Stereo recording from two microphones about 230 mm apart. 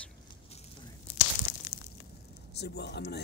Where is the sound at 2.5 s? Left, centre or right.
Left.